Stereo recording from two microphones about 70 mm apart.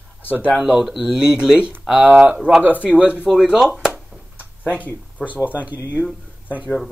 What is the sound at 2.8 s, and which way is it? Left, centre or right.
Speech, centre.